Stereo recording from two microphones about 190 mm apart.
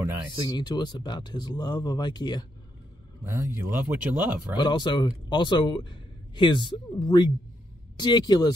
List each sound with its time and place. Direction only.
0.4 s speech: 25° left (ahead or behind)
3.3 s speech: 10° right (ahead or behind)
4.6 s speech: 25° left (ahead or behind)